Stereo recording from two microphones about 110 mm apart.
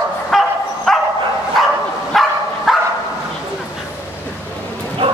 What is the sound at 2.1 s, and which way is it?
Dog, centre (ahead or behind).